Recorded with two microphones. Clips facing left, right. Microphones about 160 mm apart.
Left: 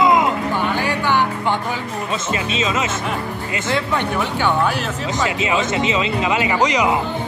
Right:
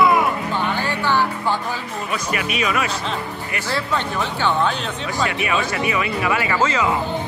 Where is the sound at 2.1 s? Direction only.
25° left (ahead or behind).